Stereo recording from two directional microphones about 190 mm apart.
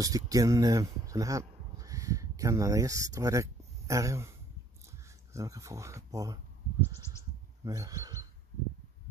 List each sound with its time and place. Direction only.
0.0 s speech: 20° right (ahead or behind)
7.6 s speech: 15° right (ahead or behind)